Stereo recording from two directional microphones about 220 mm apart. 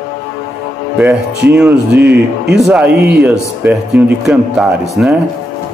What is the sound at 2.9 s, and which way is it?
Speech, 50° right (ahead or behind).